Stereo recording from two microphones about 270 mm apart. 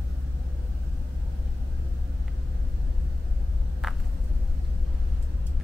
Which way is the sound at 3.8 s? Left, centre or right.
Centre.